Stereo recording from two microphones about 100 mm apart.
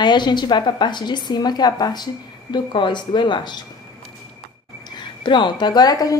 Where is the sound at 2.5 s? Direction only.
50° left (ahead or behind).